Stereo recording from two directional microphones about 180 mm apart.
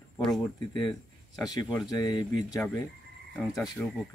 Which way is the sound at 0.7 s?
25° left (ahead or behind).